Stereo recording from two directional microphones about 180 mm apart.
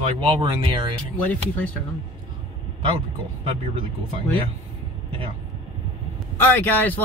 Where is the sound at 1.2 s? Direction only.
10° left (ahead or behind).